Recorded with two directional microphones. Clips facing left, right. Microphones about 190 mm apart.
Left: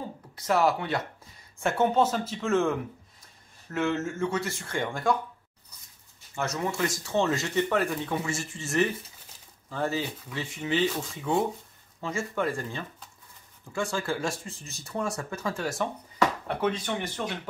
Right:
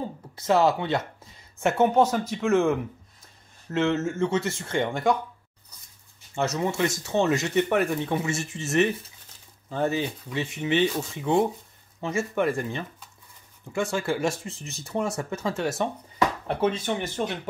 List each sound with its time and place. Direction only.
0.4 s speech: 25° right (ahead or behind)
3.7 s speech: 20° right (ahead or behind)
6.3 s speech: 25° right (ahead or behind)